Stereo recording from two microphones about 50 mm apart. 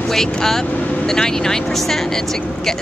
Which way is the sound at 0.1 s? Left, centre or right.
Centre.